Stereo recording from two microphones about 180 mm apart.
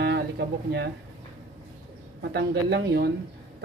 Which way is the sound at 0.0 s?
70° right (ahead or behind).